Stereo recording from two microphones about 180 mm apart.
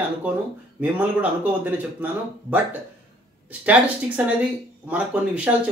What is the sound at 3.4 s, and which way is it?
Speech, 5° right (ahead or behind).